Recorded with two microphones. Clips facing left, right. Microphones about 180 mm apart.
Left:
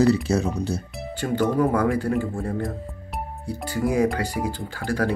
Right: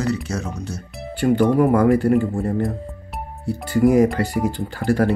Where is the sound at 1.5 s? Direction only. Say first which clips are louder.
Right 5 dB; 15° right (ahead or behind).